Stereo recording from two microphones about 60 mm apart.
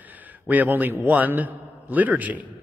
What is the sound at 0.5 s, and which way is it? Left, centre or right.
A man's voice, right.